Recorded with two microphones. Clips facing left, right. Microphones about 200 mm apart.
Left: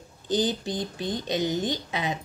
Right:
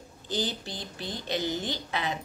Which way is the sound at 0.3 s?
20° left (ahead or behind).